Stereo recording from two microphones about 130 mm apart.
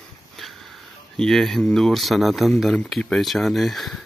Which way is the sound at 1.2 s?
5° left (ahead or behind).